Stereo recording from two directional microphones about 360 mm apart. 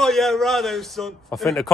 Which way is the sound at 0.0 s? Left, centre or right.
Centre.